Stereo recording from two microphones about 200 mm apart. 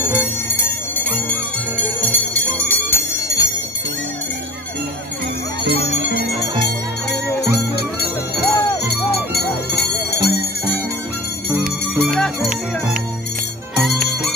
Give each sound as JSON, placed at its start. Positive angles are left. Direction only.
{"t": 0.0, "sound": "music", "side_deg": -10}
{"t": 2.0, "sound": "bell", "side_deg": 10}
{"t": 5.6, "sound": "music", "side_deg": -55}
{"t": 8.5, "sound": "music", "side_deg": 20}
{"t": 9.8, "sound": "music", "side_deg": 55}
{"t": 11.9, "sound": "music", "side_deg": -5}